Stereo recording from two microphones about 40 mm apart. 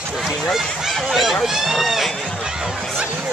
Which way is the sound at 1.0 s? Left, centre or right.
Centre.